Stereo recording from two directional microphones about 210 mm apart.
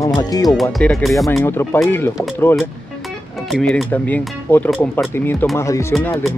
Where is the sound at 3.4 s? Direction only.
Centre (ahead or behind).